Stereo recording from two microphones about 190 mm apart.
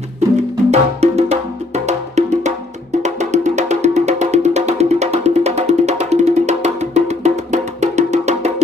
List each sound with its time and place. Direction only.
0.7 s music: 35° right (ahead or behind)